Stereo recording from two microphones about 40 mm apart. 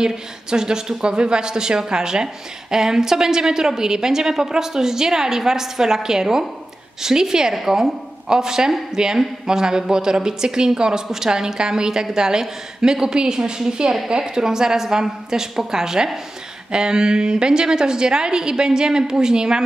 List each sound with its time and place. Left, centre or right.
0.0 s a woman's voice: centre